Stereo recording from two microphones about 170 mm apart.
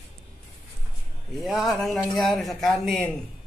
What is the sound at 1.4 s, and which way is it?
A man's voice, centre (ahead or behind).